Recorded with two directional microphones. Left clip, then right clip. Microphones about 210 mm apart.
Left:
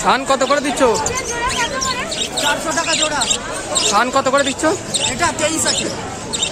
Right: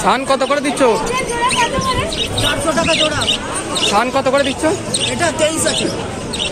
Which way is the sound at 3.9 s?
20° left (ahead or behind).